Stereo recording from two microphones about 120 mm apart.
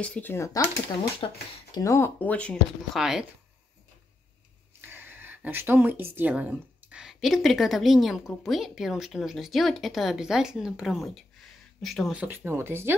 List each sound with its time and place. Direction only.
0.0 s speech: 10° left (ahead or behind)
1.7 s speech: 25° left (ahead or behind); by 2.6 s 10° left (ahead or behind)
2.9 s speech: 5° right (ahead or behind)
4.8 s speech: 15° right (ahead or behind); by 12.2 s centre (ahead or behind)
12.2 s speech: 20° right (ahead or behind)